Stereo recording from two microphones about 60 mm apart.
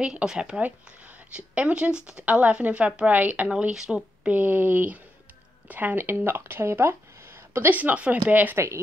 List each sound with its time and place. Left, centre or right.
0.0 s speech: centre
3.7 s speech: centre
4.3 s speech: right
7.7 s speech: right